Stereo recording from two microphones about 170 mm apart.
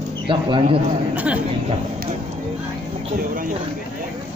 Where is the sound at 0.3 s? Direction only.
30° right (ahead or behind).